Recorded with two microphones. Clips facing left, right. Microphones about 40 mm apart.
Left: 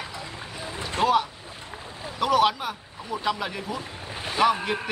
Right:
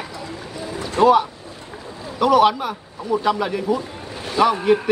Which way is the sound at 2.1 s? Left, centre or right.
Centre.